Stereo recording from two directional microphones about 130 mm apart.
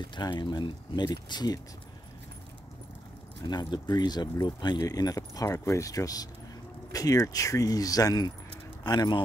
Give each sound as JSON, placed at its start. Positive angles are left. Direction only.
{"t": 0.0, "sound": "speech", "side_deg": 35}
{"t": 3.4, "sound": "speech", "side_deg": 35}